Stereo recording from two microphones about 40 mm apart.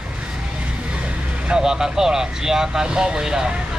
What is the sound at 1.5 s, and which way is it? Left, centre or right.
Speech, centre.